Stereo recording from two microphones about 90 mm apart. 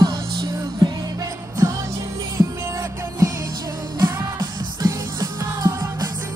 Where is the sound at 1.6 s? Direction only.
35° right (ahead or behind).